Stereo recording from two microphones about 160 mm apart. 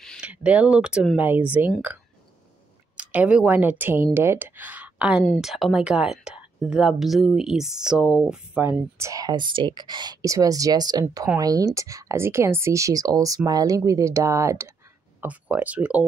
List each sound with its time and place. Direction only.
0.2 s speech: 10° right (ahead or behind)
3.0 s speech: 10° right (ahead or behind)